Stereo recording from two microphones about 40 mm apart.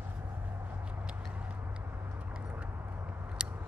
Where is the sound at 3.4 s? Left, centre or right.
Right.